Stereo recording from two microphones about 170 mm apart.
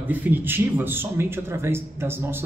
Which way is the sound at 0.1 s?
10° right (ahead or behind).